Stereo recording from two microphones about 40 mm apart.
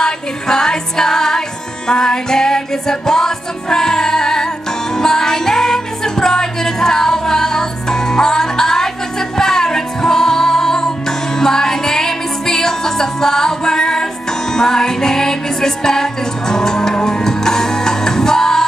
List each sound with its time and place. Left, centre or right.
0.0 s music: centre